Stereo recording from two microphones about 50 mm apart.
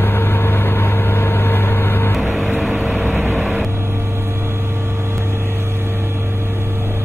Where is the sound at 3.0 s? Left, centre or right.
Right.